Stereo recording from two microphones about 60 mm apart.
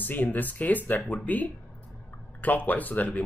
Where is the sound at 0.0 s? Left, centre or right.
Left.